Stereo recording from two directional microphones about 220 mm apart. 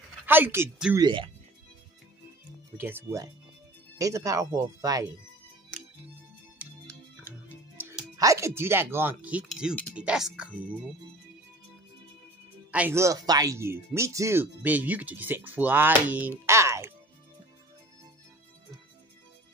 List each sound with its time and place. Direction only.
0.3 s speech: 10° right (ahead or behind)
0.9 s speech: 20° right (ahead or behind)
2.8 s speech: 10° right (ahead or behind)
7.2 s music: 10° right (ahead or behind)
9.2 s speech: 5° right (ahead or behind)
12.7 s speech: 10° right (ahead or behind)